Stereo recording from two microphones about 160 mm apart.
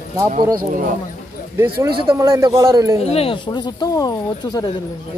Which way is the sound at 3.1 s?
35° left (ahead or behind).